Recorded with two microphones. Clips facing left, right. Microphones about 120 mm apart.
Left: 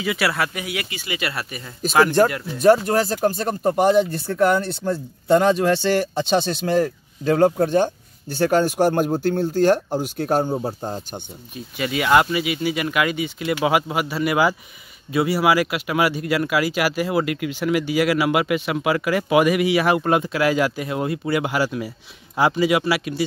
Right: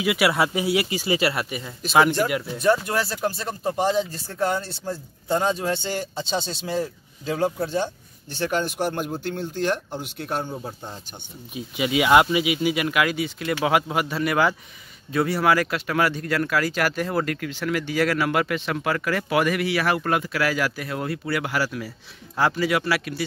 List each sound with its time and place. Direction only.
0.0 s speech: 10° right (ahead or behind)
0.4 s speech: 25° right (ahead or behind)
2.6 s speech: 45° left (ahead or behind)
11.5 s speech: 10° right (ahead or behind); by 23.2 s 15° left (ahead or behind)